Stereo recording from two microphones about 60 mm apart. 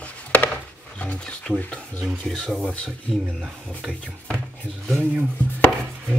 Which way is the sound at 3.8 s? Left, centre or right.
Right.